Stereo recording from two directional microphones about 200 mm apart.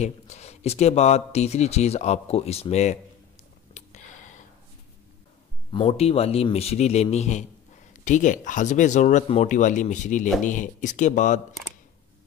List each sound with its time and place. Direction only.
0.0 s speech: 35° left (ahead or behind)
3.7 s a sound: 35° left (ahead or behind)
5.7 s speech: 30° left (ahead or behind)